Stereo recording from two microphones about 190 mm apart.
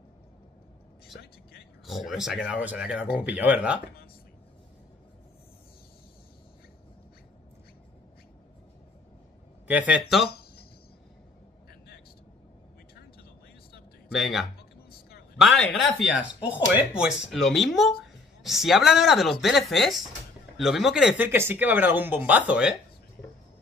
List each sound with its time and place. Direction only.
1.2 s whispering: 55° left (ahead or behind)
1.9 s speech: centre (ahead or behind)
9.7 s speech: 5° right (ahead or behind)
14.1 s speech: centre (ahead or behind)
15.7 s speech: 5° right (ahead or behind)